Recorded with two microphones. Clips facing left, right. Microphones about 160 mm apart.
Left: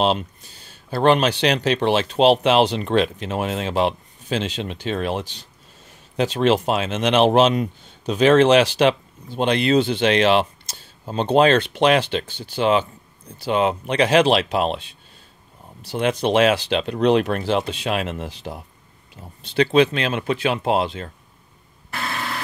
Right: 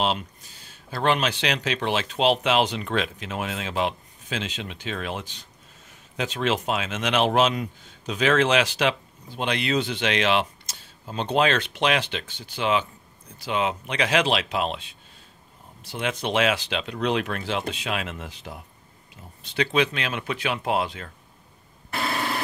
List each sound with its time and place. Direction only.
0.0 s speech: 30° left (ahead or behind)